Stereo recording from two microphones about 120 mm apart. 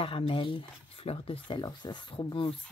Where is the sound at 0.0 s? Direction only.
45° left (ahead or behind).